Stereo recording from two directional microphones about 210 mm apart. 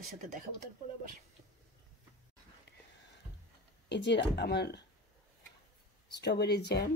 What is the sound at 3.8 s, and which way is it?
Speech, 55° left (ahead or behind).